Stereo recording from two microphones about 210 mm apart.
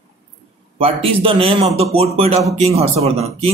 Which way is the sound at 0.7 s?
25° right (ahead or behind).